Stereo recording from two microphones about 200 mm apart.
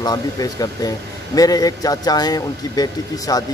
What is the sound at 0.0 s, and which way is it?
A man's voice, 20° left (ahead or behind).